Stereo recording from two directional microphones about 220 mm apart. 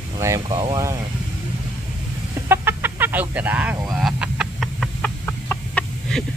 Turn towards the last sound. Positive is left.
turn(degrees=5)  # may be behind; listen again after turning